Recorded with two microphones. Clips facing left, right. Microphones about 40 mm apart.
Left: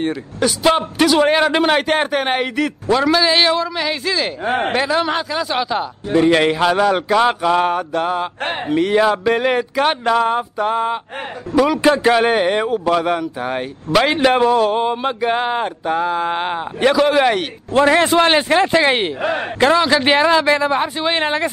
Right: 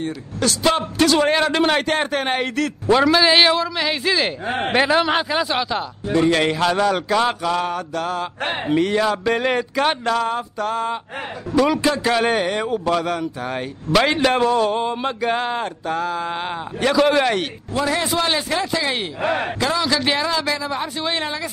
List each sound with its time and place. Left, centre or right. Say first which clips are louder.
0.4 s a man's voice: left 3 dB; centre
2.9 s a man's voice: right 1 dB; centre
5.5 s speech: left 3 dB; centre
6.1 s a man's voice: left 4 dB; centre
7.5 s a man's voice: left 6 dB; left
9.2 s a man's voice: left 3 dB; centre
10.1 s speech: left 5 dB; left
11.5 s speech: left 2 dB; centre
11.8 s a man's voice: left 5 dB; left
16.9 s a man's voice: left 1 dB; centre
17.7 s speech: left 8 dB; left